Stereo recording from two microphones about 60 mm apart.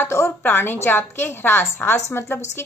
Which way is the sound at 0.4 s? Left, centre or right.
Left.